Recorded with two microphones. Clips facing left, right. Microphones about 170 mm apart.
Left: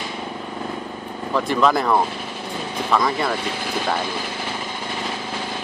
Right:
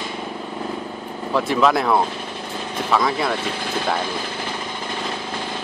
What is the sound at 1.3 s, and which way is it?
Speech, centre (ahead or behind).